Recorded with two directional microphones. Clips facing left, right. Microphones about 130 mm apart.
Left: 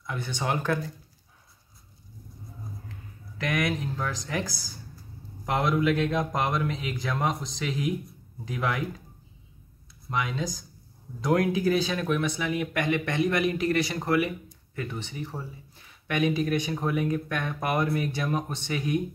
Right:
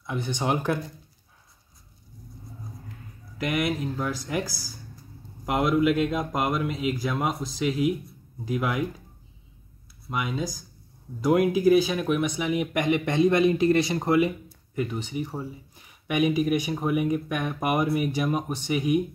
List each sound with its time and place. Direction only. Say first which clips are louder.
0.0 s speech: right 3 dB; 20° right (ahead or behind)
3.3 s speech: right 2 dB; 10° right (ahead or behind)
5.4 s speech: right 3 dB; 5° right (ahead or behind)
10.0 s speech: right 1 dB; 10° right (ahead or behind)